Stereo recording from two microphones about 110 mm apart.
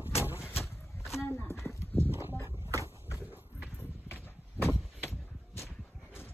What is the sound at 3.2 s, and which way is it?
Clip-clop, 15° right (ahead or behind).